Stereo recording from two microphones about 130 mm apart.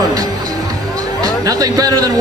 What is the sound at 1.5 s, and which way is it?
Speech, 25° right (ahead or behind).